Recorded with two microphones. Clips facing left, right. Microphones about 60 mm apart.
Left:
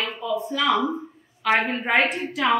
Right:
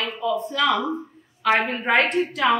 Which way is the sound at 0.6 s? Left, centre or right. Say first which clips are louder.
Left 1 dB; left.